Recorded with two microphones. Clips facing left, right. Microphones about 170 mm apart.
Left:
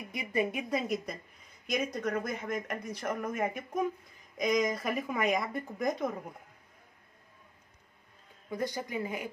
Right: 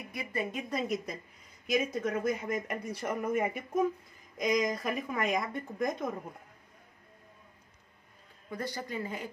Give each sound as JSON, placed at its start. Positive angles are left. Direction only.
{"t": 0.1, "sound": "a woman's voice", "side_deg": 15}
{"t": 8.5, "sound": "a woman's voice", "side_deg": 20}